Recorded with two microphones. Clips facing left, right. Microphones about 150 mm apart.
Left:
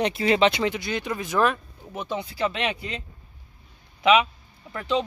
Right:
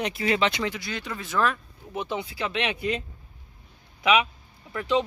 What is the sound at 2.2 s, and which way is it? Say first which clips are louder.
Speech: left 2 dB; 40° left (ahead or behind).